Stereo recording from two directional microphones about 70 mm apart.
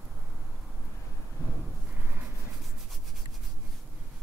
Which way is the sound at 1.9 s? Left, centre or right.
Right.